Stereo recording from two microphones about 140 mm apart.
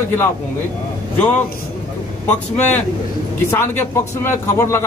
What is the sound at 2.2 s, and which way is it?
A man's voice, 10° left (ahead or behind).